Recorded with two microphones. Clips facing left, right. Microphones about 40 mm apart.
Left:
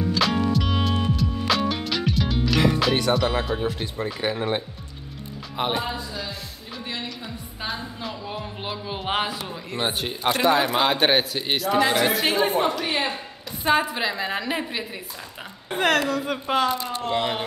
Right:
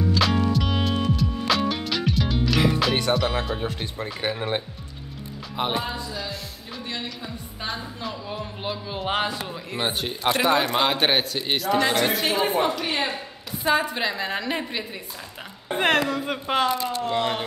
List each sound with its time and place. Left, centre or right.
0.1 s music: centre
3.1 s a man's voice: centre
7.6 s a man's voice: centre
15.7 s a woman's voice: right
16.1 s speech: centre
16.7 s a man's voice: centre